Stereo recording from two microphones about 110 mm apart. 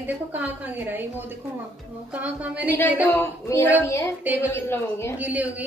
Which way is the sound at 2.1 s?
15° right (ahead or behind).